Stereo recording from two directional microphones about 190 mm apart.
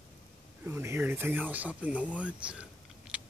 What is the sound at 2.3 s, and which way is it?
Speech, 5° right (ahead or behind).